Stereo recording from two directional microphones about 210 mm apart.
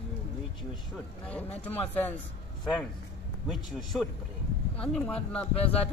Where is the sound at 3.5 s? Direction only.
Centre (ahead or behind).